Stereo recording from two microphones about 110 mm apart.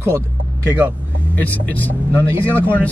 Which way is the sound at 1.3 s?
15° left (ahead or behind).